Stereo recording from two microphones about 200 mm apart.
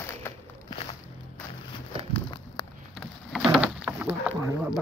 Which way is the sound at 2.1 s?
25° left (ahead or behind).